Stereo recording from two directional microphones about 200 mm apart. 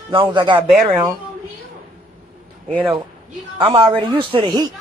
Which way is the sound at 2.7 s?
25° right (ahead or behind).